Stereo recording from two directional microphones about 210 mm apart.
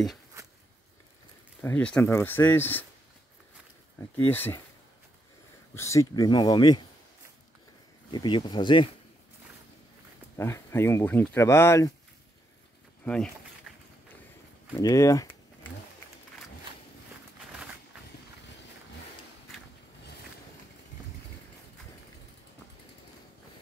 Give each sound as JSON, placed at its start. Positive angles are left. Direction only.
{"t": 0.4, "sound": "a sound", "side_deg": -15}
{"t": 1.6, "sound": "speech", "side_deg": 10}
{"t": 4.3, "sound": "speech", "side_deg": 10}
{"t": 5.8, "sound": "speech", "side_deg": 15}
{"t": 8.1, "sound": "speech", "side_deg": 20}
{"t": 10.3, "sound": "speech", "side_deg": 10}
{"t": 13.0, "sound": "speech", "side_deg": 5}
{"t": 14.8, "sound": "speech", "side_deg": 15}
{"t": 17.5, "sound": "a sound", "side_deg": -5}